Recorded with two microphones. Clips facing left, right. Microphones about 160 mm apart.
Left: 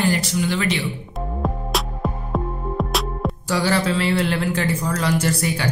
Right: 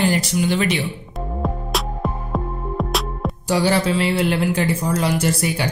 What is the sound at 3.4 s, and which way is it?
Speech, 20° right (ahead or behind).